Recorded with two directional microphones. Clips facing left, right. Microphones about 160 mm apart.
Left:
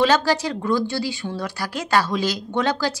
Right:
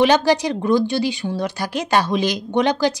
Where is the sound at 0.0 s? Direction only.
20° right (ahead or behind).